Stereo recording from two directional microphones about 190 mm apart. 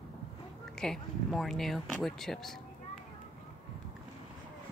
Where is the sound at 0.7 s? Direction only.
Centre (ahead or behind).